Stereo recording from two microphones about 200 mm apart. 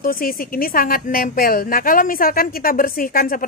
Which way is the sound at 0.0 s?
45° left (ahead or behind).